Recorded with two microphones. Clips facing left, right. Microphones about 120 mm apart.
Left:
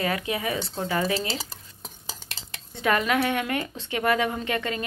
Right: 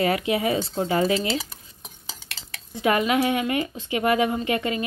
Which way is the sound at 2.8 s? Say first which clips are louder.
Right 2 dB; 15° right (ahead or behind).